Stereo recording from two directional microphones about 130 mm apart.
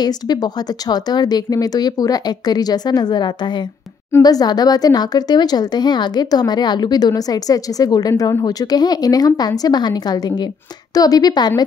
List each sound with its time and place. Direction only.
0.0 s speech: 30° left (ahead or behind)